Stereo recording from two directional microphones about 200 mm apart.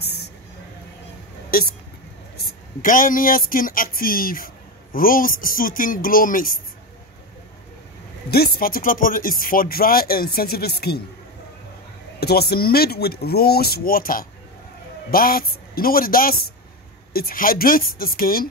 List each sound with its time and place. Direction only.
0.0 s music: 55° left (ahead or behind)
1.5 s speech: 45° left (ahead or behind)
8.3 s speech: 50° left (ahead or behind)
12.2 s speech: 55° left (ahead or behind)